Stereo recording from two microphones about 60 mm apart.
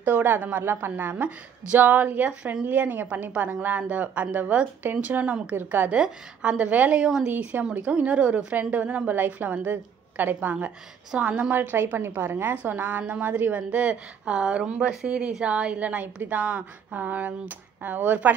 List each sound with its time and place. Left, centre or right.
0.0 s a woman's voice: right
11.5 s a woman's voice: right